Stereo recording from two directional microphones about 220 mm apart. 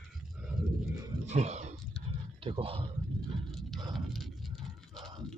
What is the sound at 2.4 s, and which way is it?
Speech, 25° right (ahead or behind).